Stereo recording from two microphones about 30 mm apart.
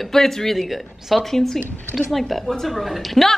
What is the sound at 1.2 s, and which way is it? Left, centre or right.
A woman's voice, centre.